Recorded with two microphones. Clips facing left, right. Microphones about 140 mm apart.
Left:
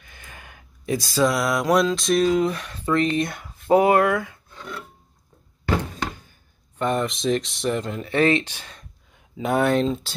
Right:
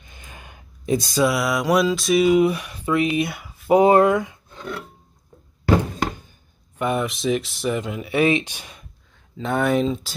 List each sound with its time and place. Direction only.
0.0 s gasp: 20° right (ahead or behind)
1.2 s speech: centre (ahead or behind)
3.7 s speech: 25° right (ahead or behind)
6.8 s speech: 5° right (ahead or behind)
9.4 s speech: 5° left (ahead or behind)